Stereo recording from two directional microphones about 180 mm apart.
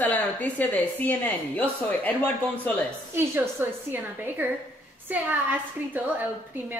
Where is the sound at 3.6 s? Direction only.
10° right (ahead or behind).